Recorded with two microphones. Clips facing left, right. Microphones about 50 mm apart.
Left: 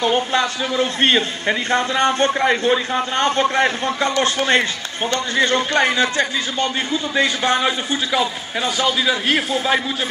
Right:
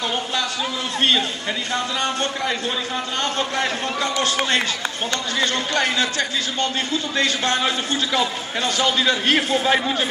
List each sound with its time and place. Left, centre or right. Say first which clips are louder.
0.0 s a man's voice: left 6 dB; left
5.1 s a man's voice: left 6 dB; left; by 9.8 s centre